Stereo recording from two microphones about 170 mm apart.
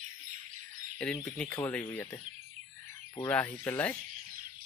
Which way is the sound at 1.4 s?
10° left (ahead or behind).